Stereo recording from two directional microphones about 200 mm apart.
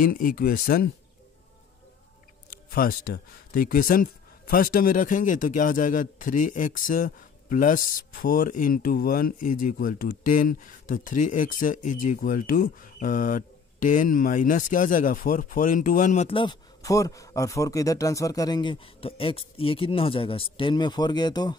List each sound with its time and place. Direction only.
0.0 s speech: 45° left (ahead or behind)
2.7 s speech: 45° left (ahead or behind); by 21.5 s 20° left (ahead or behind)